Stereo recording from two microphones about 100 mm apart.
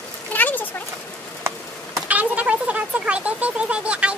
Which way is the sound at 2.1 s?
15° right (ahead or behind).